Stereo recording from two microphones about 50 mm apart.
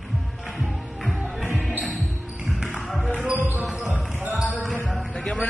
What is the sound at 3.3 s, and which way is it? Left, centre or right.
Music, right.